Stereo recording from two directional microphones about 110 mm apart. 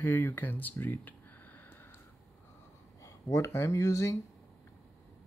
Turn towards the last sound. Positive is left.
turn(degrees=25)  # may be behind; listen again after turning